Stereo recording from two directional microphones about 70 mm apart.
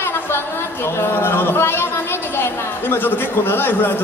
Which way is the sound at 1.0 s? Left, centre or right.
Left.